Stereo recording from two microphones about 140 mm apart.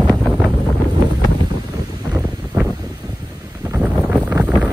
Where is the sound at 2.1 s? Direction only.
15° right (ahead or behind).